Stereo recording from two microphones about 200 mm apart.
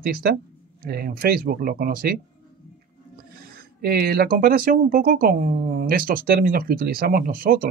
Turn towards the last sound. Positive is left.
turn(degrees=-45)  # may be behind; listen again after turning